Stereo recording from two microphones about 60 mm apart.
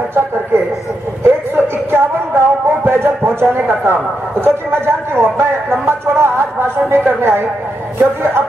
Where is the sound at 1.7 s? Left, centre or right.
Right.